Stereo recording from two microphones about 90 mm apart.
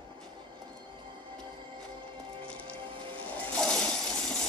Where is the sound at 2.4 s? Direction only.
15° left (ahead or behind).